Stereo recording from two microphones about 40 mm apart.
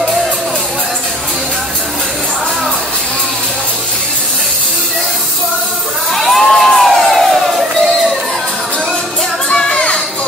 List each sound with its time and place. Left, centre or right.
6.1 s crowd: centre
9.5 s music: centre